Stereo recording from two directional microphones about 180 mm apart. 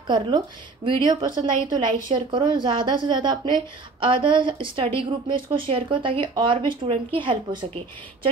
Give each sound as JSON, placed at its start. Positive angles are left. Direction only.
{"t": 0.0, "sound": "speech", "side_deg": -25}